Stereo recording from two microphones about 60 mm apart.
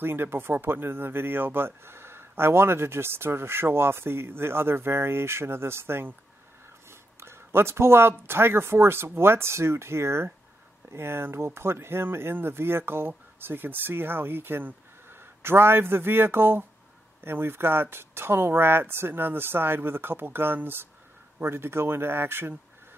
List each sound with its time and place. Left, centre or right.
0.0 s speech: right